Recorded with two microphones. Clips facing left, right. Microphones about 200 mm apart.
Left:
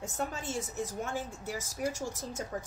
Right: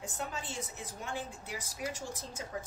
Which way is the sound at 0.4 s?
45° left (ahead or behind).